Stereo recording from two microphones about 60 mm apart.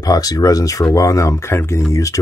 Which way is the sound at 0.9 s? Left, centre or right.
Left.